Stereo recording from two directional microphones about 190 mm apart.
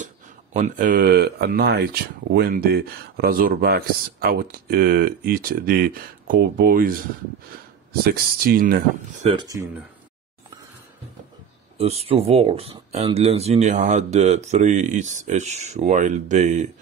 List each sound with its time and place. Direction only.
0.0 s speech: 40° right (ahead or behind)
8.0 s speech: 50° right (ahead or behind)
9.2 s speech: 25° right (ahead or behind)
11.8 s speech: 30° right (ahead or behind)